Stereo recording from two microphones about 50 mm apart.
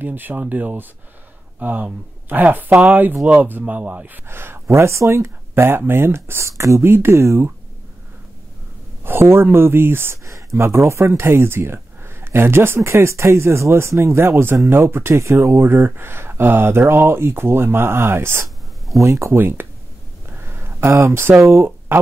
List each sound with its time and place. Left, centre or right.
0.0 s speech: right
3.6 s speech: right
4.3 s speech: right
4.6 s speech: right
5.5 s speech: right
6.8 s speech: right
9.0 s speech: right
10.2 s speech: right
11.1 s speech: right
15.1 s speech: right
15.6 s speech: right
18.9 s speech: right
19.3 s speech: right
20.2 s a sound: right